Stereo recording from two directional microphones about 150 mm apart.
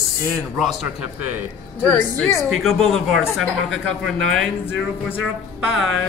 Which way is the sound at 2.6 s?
Centre (ahead or behind).